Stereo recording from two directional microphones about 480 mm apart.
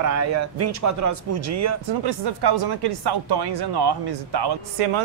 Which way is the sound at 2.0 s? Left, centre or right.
Right.